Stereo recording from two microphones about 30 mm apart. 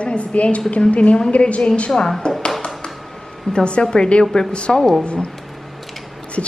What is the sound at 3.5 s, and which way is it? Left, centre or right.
Speech, left.